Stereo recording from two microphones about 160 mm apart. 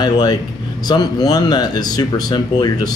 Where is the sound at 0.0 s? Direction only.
25° left (ahead or behind).